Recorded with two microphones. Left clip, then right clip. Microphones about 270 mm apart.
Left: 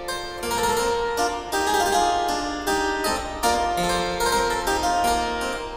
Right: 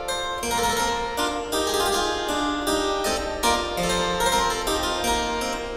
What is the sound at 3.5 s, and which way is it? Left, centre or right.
Harpsichord, centre.